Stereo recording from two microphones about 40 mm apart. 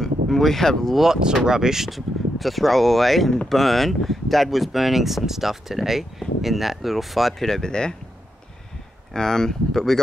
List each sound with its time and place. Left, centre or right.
0.0 s speech: centre
0.9 s speech: centre
7.4 s speech: centre
9.1 s speech: centre